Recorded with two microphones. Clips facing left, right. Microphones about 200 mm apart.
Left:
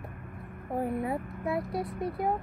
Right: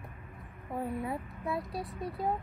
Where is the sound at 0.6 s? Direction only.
55° left (ahead or behind).